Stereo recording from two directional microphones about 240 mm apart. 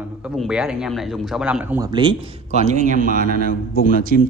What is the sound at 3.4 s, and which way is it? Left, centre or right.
Speech, left.